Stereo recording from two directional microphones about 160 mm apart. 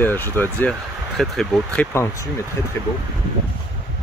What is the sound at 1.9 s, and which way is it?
Speech, 15° left (ahead or behind).